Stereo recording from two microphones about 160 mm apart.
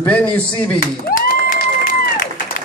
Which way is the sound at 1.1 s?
60° left (ahead or behind).